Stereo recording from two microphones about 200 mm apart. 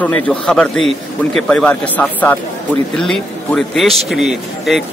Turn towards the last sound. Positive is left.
turn(degrees=0)  # may be behind; listen again after turning